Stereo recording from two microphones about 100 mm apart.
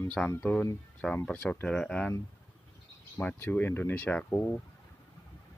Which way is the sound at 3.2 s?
20° left (ahead or behind).